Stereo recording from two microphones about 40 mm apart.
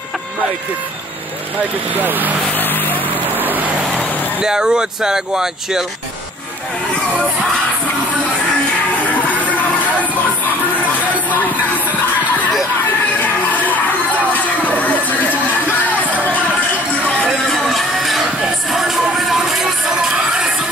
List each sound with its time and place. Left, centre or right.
2.0 s speech: right
2.5 s vehicle: left
3.3 s vehicle: right
4.0 s vehicle: left
4.4 s speech: centre
9.1 s a sound: left
13.2 s music: left
14.7 s a sound: left
17.6 s a sound: centre
18.4 s music: centre